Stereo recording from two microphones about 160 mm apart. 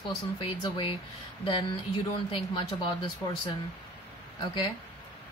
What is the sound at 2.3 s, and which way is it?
Speech, 30° left (ahead or behind).